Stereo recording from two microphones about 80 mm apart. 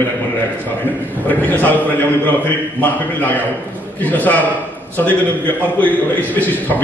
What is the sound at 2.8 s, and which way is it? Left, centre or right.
A man's voice, left.